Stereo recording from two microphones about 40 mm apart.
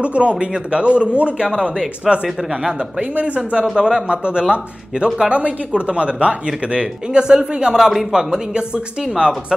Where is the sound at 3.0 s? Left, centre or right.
Right.